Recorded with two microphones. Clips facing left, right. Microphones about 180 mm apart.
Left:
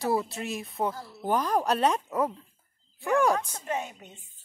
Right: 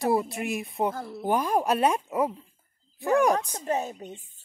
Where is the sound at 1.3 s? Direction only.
10° right (ahead or behind).